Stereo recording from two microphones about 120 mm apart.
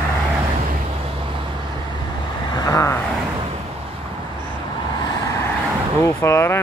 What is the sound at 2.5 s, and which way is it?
Vehicle, 30° left (ahead or behind).